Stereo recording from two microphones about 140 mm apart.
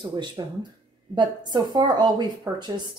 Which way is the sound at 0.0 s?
35° right (ahead or behind).